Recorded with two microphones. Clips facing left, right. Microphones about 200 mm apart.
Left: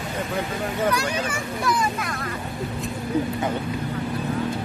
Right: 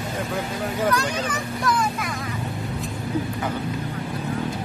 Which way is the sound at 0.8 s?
10° left (ahead or behind).